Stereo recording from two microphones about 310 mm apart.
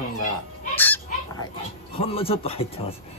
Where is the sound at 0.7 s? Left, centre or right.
Centre.